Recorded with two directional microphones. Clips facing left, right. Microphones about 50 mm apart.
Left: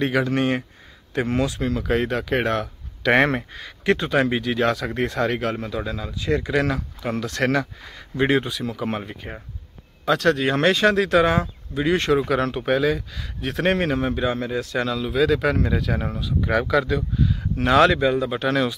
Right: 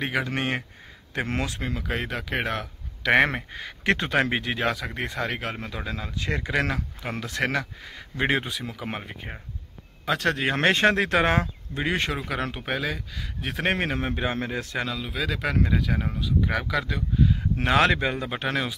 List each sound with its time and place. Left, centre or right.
0.0 s speech: centre
0.3 s speech: right
1.8 s speech: centre
3.8 s speech: right
4.6 s speech: centre
6.1 s speech: right
8.6 s speech: centre; by 11.9 s right
12.1 s speech: centre
13.9 s speech: right
14.9 s speech: centre
17.2 s speech: right